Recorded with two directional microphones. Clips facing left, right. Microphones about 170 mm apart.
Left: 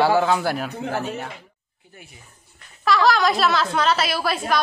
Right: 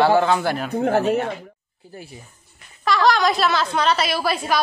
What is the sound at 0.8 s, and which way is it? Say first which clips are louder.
Speech: right 8 dB; 55° right (ahead or behind).